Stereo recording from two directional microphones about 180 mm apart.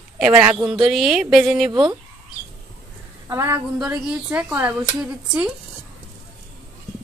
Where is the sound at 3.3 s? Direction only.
15° right (ahead or behind).